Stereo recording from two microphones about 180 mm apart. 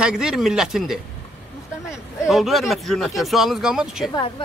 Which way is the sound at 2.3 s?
Centre (ahead or behind).